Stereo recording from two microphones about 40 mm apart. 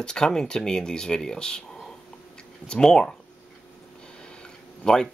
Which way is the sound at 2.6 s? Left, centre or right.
Centre.